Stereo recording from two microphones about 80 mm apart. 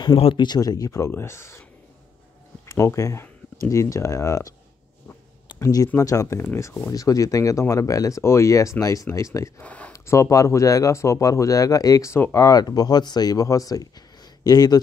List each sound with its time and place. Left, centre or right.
0.0 s speech: left
0.6 s speech: left
5.6 s speech: left
9.6 s speech: centre
9.9 s speech: left